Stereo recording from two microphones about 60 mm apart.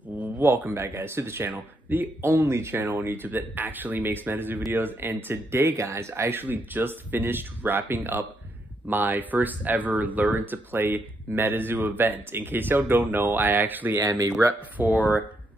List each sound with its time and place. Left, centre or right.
0.1 s a sound: right
0.7 s speech: right
1.5 s speech: right
2.2 s speech: right
2.8 s speech: right
6.4 s speech: right
14.0 s speech: right
14.8 s speech: right